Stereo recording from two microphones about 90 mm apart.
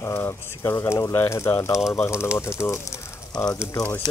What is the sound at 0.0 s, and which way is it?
Speech, 30° left (ahead or behind).